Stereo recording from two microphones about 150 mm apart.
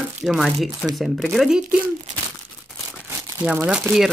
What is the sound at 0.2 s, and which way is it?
Speech, centre (ahead or behind).